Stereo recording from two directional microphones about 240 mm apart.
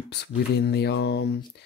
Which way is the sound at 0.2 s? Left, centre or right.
Left.